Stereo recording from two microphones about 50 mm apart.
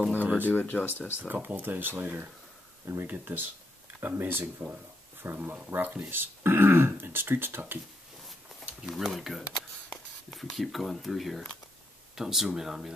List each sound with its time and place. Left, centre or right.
0.2 s a sound: right
0.5 s speech: left
1.2 s speech: right
5.2 s speech: right
5.7 s speech: right
8.8 s speech: centre